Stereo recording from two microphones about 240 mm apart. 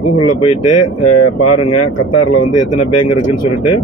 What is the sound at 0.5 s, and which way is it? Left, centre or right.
Mantra, left.